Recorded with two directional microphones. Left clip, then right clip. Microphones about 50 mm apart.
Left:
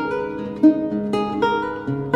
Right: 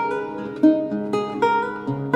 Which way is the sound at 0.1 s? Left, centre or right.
Centre.